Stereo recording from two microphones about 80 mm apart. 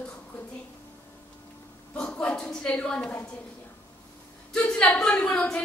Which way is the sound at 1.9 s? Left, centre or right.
Centre.